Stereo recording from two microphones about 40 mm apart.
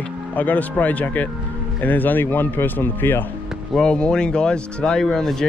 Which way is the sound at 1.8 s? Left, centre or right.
Left.